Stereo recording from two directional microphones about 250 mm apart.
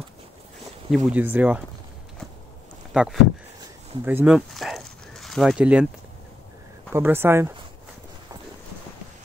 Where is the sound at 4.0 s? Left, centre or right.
Centre.